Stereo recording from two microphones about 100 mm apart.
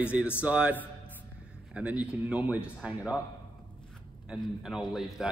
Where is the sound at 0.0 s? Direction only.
10° right (ahead or behind).